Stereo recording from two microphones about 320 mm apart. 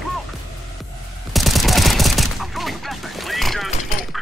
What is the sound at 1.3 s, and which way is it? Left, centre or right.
Fusillade, centre.